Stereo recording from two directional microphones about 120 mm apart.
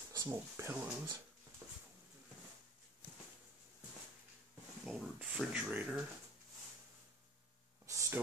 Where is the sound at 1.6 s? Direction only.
25° right (ahead or behind).